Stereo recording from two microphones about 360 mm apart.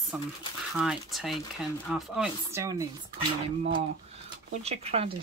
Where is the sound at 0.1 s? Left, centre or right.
Centre.